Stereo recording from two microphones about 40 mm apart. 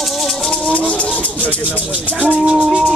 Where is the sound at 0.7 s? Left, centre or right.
Left.